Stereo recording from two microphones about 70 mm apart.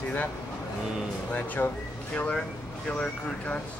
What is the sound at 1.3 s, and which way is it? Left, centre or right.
Speech, left.